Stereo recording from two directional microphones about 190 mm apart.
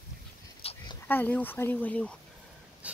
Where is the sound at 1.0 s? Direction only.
10° left (ahead or behind).